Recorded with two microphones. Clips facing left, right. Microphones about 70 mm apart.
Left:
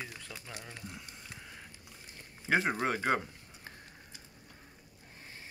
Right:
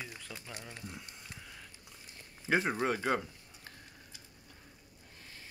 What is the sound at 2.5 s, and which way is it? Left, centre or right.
Speech, centre.